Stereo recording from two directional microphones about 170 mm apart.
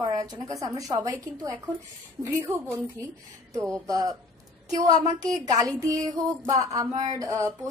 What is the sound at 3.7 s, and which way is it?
A woman's voice, 20° right (ahead or behind).